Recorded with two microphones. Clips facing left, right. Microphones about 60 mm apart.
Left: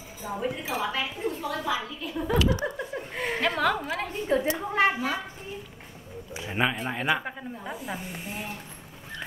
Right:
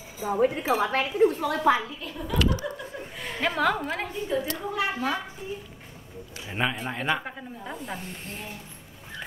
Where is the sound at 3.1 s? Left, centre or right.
Left.